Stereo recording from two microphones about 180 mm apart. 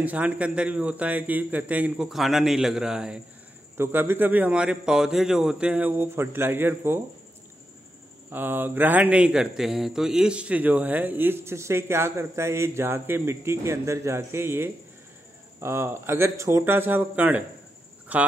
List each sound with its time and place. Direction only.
0.0 s a man's voice: 10° right (ahead or behind)
8.3 s a man's voice: 10° right (ahead or behind)